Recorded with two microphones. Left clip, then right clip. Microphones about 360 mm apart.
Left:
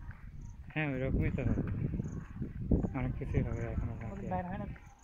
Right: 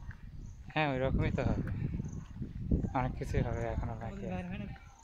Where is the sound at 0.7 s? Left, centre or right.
Centre.